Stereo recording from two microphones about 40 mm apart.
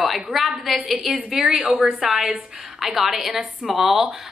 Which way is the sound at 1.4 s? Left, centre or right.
Centre.